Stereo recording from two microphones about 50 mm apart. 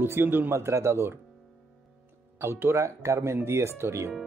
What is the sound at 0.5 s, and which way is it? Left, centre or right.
Speech, right.